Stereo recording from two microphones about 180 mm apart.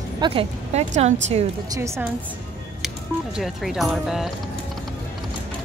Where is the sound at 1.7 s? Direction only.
15° right (ahead or behind).